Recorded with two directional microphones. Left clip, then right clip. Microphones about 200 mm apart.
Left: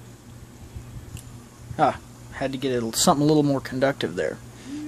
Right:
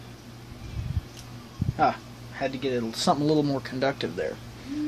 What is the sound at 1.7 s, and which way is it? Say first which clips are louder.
Speech: left 2 dB; 50° left (ahead or behind).